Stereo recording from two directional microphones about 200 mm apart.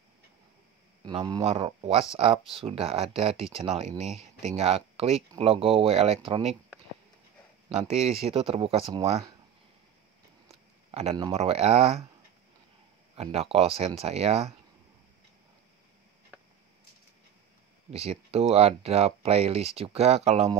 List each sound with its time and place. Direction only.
1.0 s speech: 20° right (ahead or behind)
7.7 s speech: 30° right (ahead or behind)
10.5 s speech: 30° right (ahead or behind)
13.1 s speech: 30° right (ahead or behind)
17.9 s speech: 30° right (ahead or behind)